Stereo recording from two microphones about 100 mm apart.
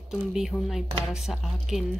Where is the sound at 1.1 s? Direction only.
5° right (ahead or behind).